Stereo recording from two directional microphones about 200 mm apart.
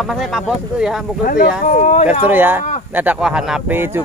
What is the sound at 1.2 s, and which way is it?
Speech, 45° left (ahead or behind).